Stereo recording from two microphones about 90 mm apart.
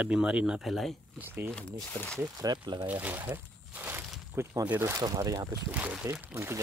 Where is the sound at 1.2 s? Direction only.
25° right (ahead or behind).